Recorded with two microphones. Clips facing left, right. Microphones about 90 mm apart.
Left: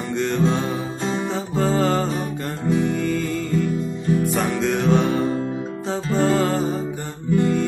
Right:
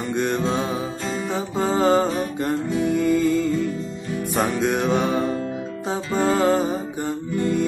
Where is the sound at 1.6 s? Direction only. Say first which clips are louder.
Right 2 dB; 20° right (ahead or behind).